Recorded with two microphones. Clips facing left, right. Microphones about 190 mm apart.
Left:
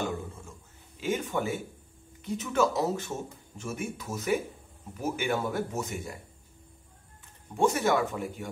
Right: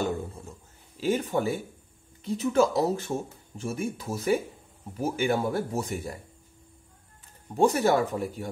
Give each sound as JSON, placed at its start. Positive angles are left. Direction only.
{"t": 0.0, "sound": "a sound", "side_deg": -35}
{"t": 2.2, "sound": "speech", "side_deg": -35}
{"t": 7.5, "sound": "speech", "side_deg": -35}